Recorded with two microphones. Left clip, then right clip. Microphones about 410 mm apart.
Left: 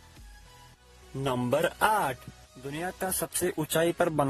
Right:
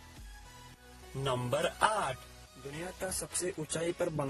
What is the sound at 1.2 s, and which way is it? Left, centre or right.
Speech, centre.